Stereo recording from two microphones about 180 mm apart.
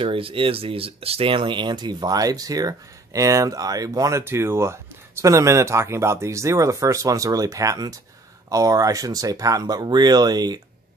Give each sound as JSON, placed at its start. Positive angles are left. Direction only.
{"t": 0.0, "sound": "speech", "side_deg": -30}